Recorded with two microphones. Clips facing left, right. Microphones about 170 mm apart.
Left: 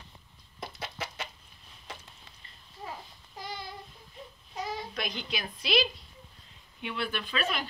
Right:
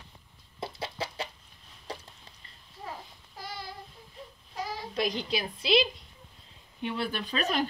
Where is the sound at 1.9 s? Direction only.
35° right (ahead or behind).